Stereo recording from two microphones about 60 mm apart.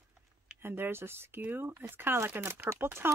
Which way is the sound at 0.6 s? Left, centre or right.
Right.